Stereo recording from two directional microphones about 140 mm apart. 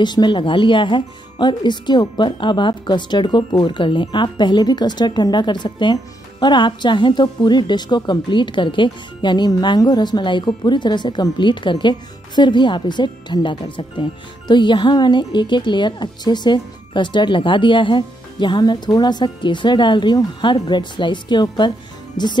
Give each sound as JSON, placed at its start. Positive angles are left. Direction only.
{"t": 0.0, "sound": "a woman's voice", "side_deg": 30}